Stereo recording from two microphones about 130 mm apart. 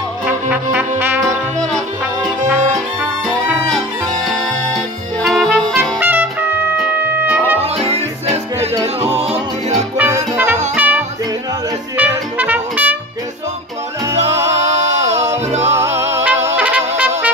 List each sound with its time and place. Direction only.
0.3 s brass instrument: 15° right (ahead or behind)
1.2 s music: 5° left (ahead or behind)
5.2 s music: centre (ahead or behind)
5.9 s trumpet: 15° right (ahead or behind)
7.2 s music: 15° right (ahead or behind)
7.8 s music: 55° right (ahead or behind)
9.9 s music: 15° right (ahead or behind)
14.7 s music: 60° right (ahead or behind)
15.7 s music: 20° right (ahead or behind)